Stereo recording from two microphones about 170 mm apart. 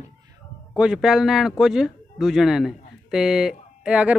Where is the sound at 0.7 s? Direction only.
5° right (ahead or behind).